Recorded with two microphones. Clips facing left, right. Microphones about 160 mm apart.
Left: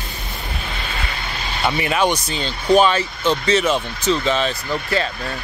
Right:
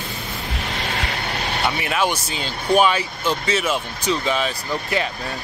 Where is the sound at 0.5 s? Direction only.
90° right; by 1.6 s 65° right (ahead or behind).